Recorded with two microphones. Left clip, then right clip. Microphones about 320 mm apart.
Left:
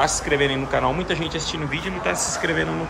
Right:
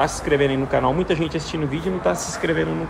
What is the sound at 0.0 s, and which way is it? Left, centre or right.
Speech, centre.